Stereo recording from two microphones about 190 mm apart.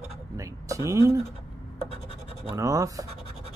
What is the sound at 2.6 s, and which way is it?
Speech, 15° right (ahead or behind).